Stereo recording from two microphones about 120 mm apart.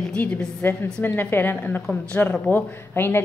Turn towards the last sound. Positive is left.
turn(degrees=20)  # may be behind; listen again after turning